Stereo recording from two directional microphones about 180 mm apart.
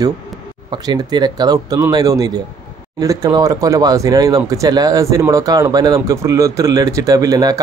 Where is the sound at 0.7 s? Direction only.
25° right (ahead or behind).